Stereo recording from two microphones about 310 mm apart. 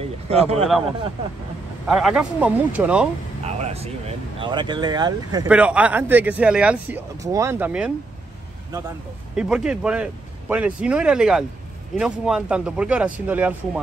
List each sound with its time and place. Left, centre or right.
0.3 s speech: centre
1.9 s speech: centre
3.4 s speech: right; by 7.9 s centre
9.3 s speech: centre